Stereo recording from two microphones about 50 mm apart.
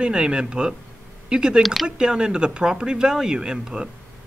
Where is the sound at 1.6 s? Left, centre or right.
Centre.